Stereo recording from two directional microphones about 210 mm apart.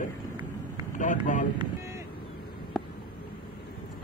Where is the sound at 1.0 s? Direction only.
40° left (ahead or behind).